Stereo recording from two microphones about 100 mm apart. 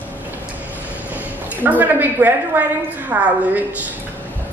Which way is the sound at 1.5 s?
15° right (ahead or behind).